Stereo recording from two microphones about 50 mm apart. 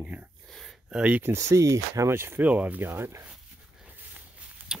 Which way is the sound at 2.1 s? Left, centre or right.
Right.